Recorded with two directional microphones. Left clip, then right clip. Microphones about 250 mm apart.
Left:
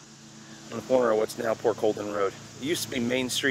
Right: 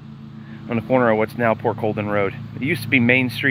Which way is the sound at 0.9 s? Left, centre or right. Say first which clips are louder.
Right 5 dB; centre.